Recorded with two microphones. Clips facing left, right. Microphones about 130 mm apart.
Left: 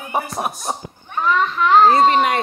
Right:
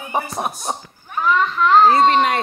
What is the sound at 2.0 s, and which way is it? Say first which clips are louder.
Speech: even; 5° left (ahead or behind).